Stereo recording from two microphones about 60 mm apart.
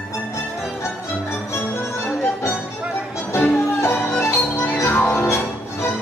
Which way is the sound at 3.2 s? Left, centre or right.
Left.